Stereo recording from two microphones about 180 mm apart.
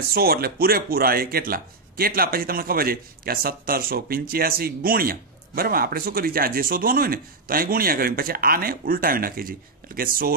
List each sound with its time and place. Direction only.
0.1 s speech: 60° right (ahead or behind)